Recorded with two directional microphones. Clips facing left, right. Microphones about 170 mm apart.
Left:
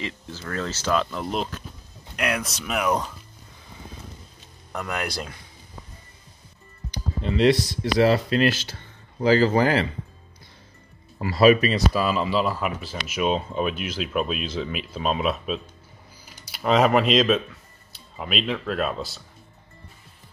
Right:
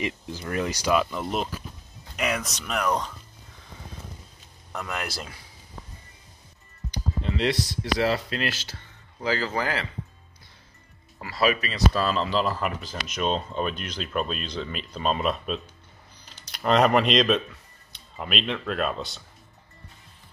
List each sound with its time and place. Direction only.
0.0 s speech: 15° right (ahead or behind); by 3.2 s 5° left (ahead or behind)
4.7 s speech: centre (ahead or behind)
8.0 s speech: 40° left (ahead or behind)
11.1 s speech: 25° left (ahead or behind)
11.9 s speech: 10° left (ahead or behind)